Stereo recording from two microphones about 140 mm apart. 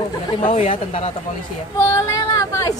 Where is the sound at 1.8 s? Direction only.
20° left (ahead or behind).